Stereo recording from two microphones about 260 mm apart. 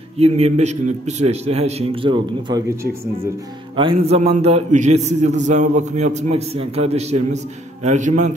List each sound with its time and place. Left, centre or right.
0.2 s a man's voice: right